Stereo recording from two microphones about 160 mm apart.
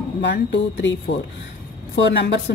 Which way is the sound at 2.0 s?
90° left.